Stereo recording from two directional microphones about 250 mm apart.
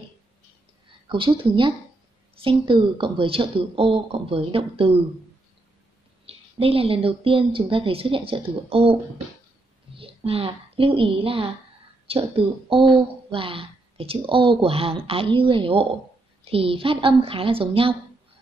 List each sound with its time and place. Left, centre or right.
1.0 s speech: centre
6.2 s speech: right
9.9 s a woman's voice: right